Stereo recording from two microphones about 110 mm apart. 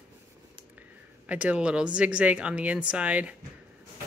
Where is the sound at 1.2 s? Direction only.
10° right (ahead or behind).